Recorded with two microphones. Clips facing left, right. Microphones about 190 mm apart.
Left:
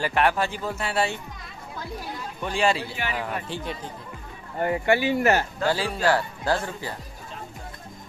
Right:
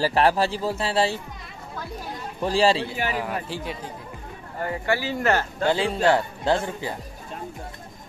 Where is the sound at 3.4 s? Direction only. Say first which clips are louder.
Even; 5° right (ahead or behind).